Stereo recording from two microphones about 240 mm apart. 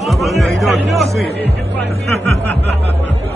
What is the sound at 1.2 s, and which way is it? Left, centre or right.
Speech, right.